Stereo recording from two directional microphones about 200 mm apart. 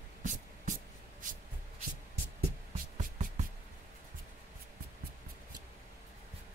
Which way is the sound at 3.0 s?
40° right (ahead or behind).